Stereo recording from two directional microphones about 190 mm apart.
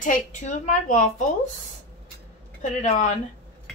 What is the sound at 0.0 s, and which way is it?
Speech, 40° left (ahead or behind).